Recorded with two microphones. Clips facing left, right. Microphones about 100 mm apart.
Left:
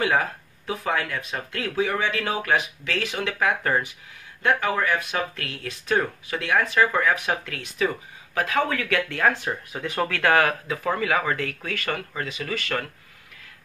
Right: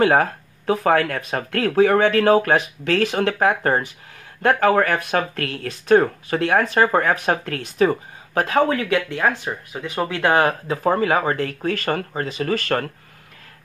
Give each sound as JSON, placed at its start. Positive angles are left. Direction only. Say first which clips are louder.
{"t": 0.0, "sound": "speech", "louder": "right 7 dB", "side_deg": -45}
{"t": 4.4, "sound": "speech", "louder": "right 7 dB", "side_deg": -50}
{"t": 9.4, "sound": "speech", "louder": "right 1 dB", "side_deg": -10}